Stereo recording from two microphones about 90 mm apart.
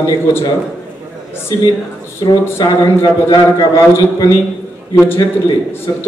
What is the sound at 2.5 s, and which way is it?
Speech, 35° left (ahead or behind).